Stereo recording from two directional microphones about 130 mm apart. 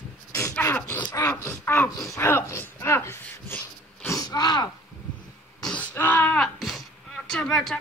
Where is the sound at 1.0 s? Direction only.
35° left (ahead or behind).